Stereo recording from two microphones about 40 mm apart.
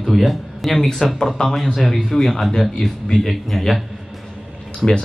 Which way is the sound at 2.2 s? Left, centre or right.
Centre.